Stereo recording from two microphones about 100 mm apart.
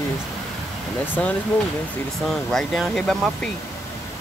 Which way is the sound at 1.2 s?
10° left (ahead or behind).